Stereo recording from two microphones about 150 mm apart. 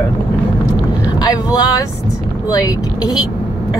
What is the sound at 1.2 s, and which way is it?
Speech, 25° left (ahead or behind).